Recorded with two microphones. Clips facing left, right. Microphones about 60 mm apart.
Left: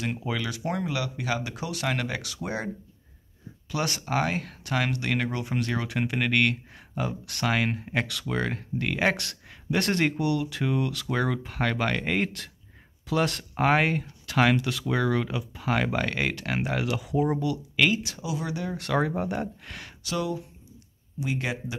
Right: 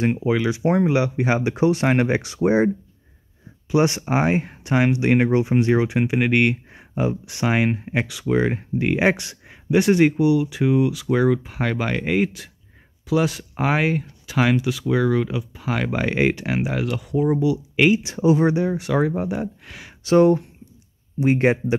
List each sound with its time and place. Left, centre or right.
0.0 s speech: right
3.7 s speech: right; by 16.1 s centre
16.1 s speech: centre
16.5 s speech: centre
17.4 s speech: centre
18.0 s speech: right
18.8 s speech: centre
20.0 s speech: right